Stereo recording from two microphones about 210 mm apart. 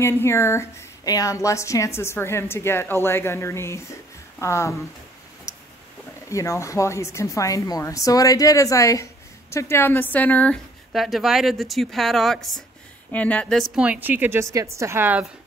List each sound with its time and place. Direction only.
0.0 s speech: 10° left (ahead or behind)
6.2 s a woman's voice: 15° left (ahead or behind); by 15.2 s 10° right (ahead or behind)